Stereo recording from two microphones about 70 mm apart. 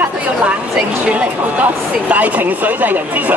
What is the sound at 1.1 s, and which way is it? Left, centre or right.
Speech, centre.